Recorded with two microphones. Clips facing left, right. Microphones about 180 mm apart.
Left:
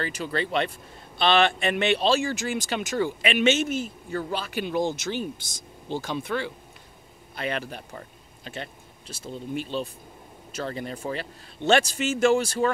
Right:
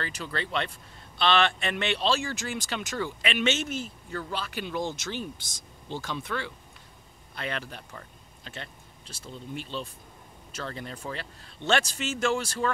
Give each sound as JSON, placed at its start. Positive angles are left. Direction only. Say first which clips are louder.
{"t": 0.0, "sound": "speech", "louder": "left 5 dB", "side_deg": 15}